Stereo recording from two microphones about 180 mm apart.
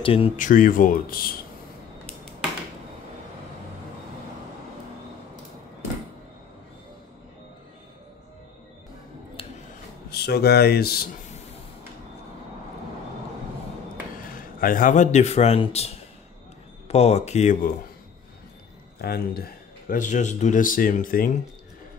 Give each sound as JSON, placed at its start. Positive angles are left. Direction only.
{"t": 0.0, "sound": "speech", "side_deg": 30}
{"t": 0.4, "sound": "speech", "side_deg": 45}
{"t": 10.0, "sound": "speech", "side_deg": 60}
{"t": 14.3, "sound": "speech", "side_deg": 50}
{"t": 18.9, "sound": "speech", "side_deg": 60}